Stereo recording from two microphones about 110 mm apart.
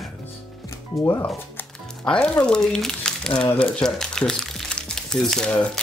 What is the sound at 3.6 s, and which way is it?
Crumpling, 5° left (ahead or behind).